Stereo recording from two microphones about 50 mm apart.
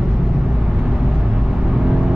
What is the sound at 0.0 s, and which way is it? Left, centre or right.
Vehicle, centre.